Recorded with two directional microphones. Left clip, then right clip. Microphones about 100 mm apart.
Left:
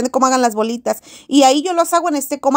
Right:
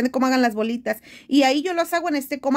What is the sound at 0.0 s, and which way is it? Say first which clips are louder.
Speech: left 6 dB; 35° left (ahead or behind).